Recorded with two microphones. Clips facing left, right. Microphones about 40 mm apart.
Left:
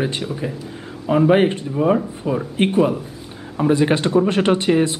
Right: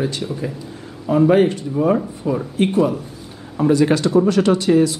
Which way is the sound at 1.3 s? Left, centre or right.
Left.